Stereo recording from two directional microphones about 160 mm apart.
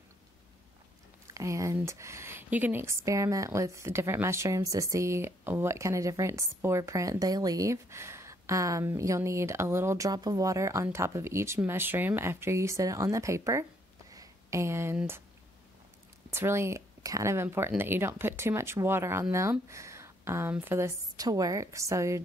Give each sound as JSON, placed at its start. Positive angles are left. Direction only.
{"t": 1.3, "sound": "speech", "side_deg": -20}
{"t": 16.3, "sound": "speech", "side_deg": -15}